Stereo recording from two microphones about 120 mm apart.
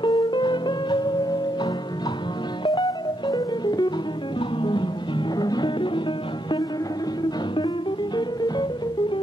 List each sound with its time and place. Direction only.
0.0 s music: 40° left (ahead or behind)
7.2 s music: 40° left (ahead or behind)